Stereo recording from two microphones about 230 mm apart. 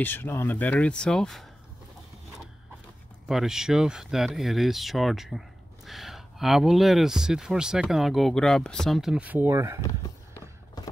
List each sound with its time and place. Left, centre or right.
0.0 s speech: centre
3.3 s speech: centre
9.8 s a sound: centre